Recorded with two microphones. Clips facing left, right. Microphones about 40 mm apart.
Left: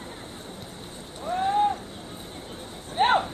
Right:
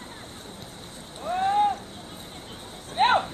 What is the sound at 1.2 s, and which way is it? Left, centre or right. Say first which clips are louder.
Boat: right 1 dB; centre.